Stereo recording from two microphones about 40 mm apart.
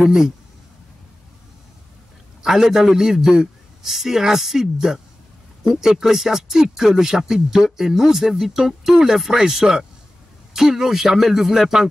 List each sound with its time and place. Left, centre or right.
0.0 s speech: centre
2.4 s speech: centre